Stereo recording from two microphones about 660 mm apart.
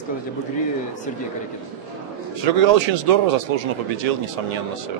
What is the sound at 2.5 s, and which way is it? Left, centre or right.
Speech, right.